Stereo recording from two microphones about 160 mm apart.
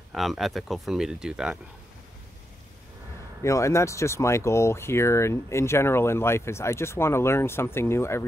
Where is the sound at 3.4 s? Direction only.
20° left (ahead or behind).